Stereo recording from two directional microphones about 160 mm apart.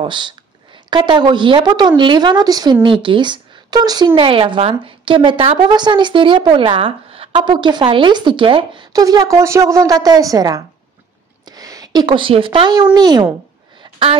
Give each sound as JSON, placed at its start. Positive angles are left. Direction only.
{"t": 0.0, "sound": "a woman's voice", "side_deg": -30}